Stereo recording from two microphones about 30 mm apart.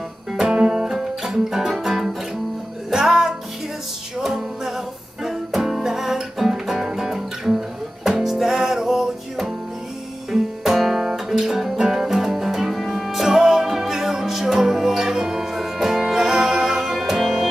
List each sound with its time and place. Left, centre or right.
0.6 s music: right
0.8 s music: centre
4.2 s music: centre
12.7 s music: centre
13.1 s music: centre